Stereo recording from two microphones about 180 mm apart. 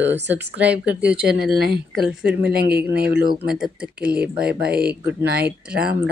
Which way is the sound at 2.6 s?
60° right (ahead or behind).